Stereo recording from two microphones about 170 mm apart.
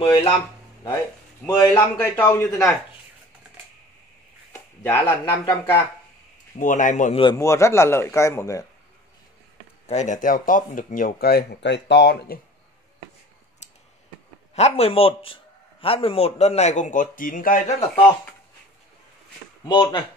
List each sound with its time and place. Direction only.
0.0 s a man's voice: 35° left (ahead or behind)
1.4 s a man's voice: 20° left (ahead or behind)
4.5 s a sound: 15° left (ahead or behind)
5.4 s a man's voice: 20° left (ahead or behind)
6.6 s speech: 50° left (ahead or behind)
7.3 s a man's voice: 15° left (ahead or behind)
9.8 s speech: 45° left (ahead or behind); by 12.4 s 80° left
13.6 s a sound: 40° left (ahead or behind)
14.5 s a man's voice: 40° left (ahead or behind)
19.6 s speech: 25° left (ahead or behind)